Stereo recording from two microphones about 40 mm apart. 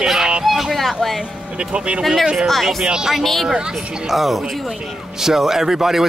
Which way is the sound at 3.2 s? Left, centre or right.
Centre.